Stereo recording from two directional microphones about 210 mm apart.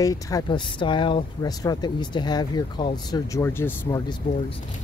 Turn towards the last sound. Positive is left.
turn(degrees=15)  # may be behind; listen again after turning